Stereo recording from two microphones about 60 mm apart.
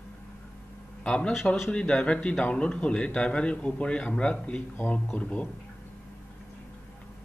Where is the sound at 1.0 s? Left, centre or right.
Centre.